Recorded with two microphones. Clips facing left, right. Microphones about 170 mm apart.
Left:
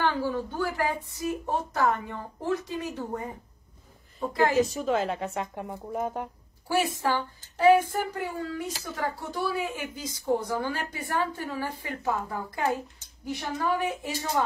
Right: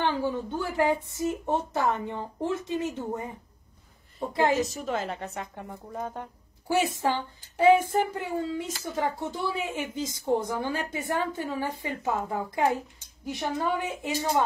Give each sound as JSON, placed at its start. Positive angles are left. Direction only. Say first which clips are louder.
{"t": 0.0, "sound": "a woman's voice", "louder": "even", "side_deg": -20}
{"t": 4.6, "sound": "a woman's voice", "louder": "left 4 dB", "side_deg": 35}
{"t": 6.7, "sound": "a woman's voice", "louder": "right 1 dB", "side_deg": -20}